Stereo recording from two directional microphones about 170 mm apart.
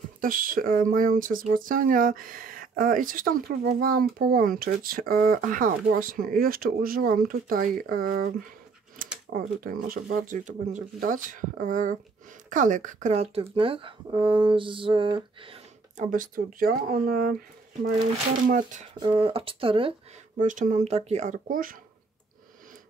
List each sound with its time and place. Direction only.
0.2 s speech: 55° right (ahead or behind)
9.4 s speech: 50° right (ahead or behind); by 15.6 s 30° right (ahead or behind)
16.0 s speech: 50° right (ahead or behind)
18.5 s speech: 45° right (ahead or behind)
18.9 s speech: 30° right (ahead or behind)
20.3 s speech: 50° right (ahead or behind)